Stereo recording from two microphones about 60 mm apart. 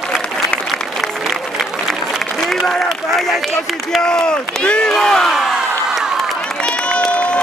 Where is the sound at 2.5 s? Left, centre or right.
Centre.